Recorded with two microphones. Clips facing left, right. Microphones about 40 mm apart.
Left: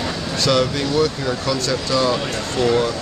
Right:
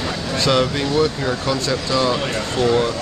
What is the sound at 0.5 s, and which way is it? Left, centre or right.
Speech, centre.